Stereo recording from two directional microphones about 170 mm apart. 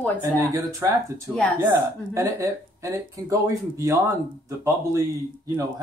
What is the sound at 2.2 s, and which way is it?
Speech, 20° right (ahead or behind).